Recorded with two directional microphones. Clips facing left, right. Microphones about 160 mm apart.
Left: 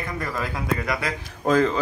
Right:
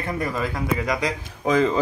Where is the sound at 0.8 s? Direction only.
15° right (ahead or behind).